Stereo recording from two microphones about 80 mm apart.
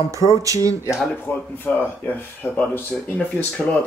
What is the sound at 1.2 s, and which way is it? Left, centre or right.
Speech, left.